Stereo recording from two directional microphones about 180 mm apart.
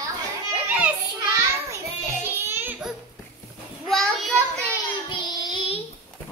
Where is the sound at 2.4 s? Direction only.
10° right (ahead or behind).